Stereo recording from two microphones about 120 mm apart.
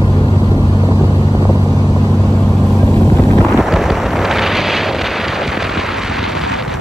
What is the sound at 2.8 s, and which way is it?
Vehicle, 20° left (ahead or behind).